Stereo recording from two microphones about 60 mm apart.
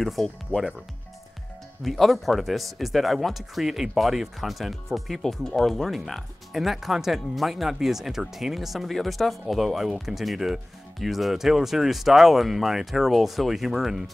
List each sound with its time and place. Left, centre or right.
0.0 s speech: centre
0.5 s speech: left
1.8 s speech: centre